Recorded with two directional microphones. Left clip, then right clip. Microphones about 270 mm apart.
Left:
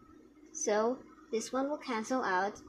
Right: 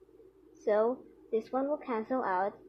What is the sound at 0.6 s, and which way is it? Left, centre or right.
Speech, centre.